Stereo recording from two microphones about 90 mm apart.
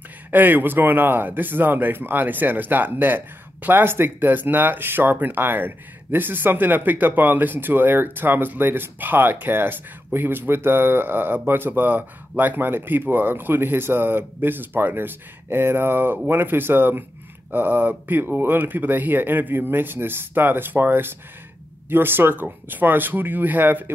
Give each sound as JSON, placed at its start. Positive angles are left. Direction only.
{"t": 0.3, "sound": "speech", "side_deg": -20}